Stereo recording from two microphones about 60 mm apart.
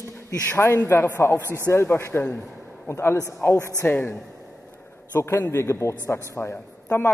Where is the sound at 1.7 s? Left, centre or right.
Left.